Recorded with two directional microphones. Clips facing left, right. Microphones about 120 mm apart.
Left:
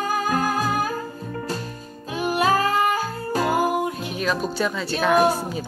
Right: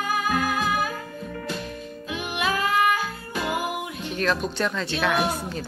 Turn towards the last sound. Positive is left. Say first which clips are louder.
# left 6 dB
turn(degrees=40)  # may be behind; listen again after turning